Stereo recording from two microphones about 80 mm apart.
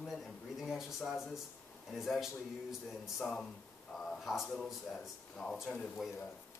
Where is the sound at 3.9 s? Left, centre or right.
Centre.